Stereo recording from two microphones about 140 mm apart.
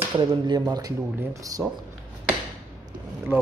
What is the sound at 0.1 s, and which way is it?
Speech, 30° right (ahead or behind).